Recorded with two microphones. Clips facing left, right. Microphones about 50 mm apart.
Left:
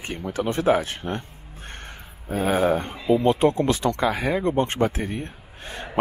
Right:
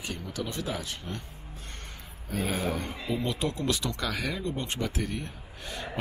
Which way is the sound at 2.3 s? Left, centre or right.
Left.